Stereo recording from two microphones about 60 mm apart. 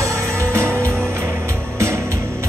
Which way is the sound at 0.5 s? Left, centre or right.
Right.